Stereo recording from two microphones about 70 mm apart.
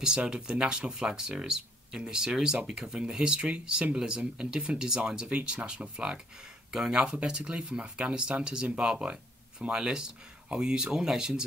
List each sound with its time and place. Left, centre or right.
0.0 s speech: centre